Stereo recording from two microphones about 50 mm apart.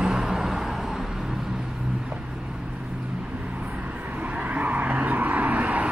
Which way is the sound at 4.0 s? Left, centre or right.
Right.